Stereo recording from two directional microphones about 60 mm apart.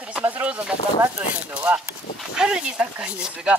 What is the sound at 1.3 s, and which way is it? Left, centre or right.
Speech, right.